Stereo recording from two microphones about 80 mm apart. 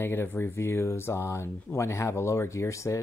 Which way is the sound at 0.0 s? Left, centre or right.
Left.